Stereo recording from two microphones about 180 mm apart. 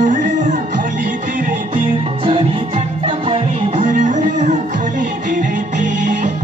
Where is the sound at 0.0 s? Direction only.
45° right (ahead or behind).